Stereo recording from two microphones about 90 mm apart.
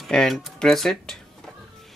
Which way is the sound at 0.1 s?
5° left (ahead or behind).